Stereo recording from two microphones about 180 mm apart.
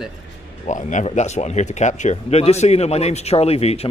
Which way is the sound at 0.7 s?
45° left (ahead or behind).